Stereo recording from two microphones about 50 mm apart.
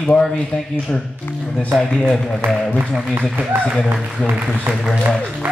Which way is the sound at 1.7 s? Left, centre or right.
Centre.